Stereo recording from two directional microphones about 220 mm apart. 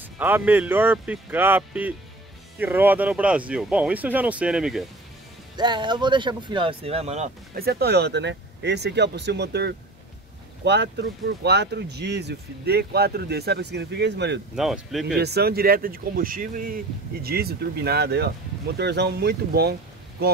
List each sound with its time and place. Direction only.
0.0 s speech: 10° right (ahead or behind)
5.6 s speech: 20° right (ahead or behind)
7.5 s speech: 45° right (ahead or behind)
14.5 s speech: centre (ahead or behind)
15.1 s speech: 45° right (ahead or behind)